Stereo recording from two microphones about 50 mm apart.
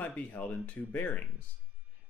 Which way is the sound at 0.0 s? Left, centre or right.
Left.